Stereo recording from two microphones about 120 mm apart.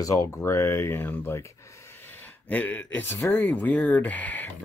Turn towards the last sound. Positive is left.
turn(degrees=15)  # may be behind; listen again after turning